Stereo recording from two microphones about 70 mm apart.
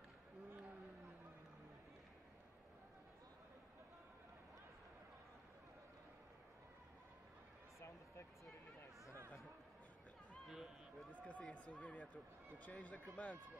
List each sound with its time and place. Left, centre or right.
10.4 s run: centre
11.1 s a sound: left
11.4 s speech: centre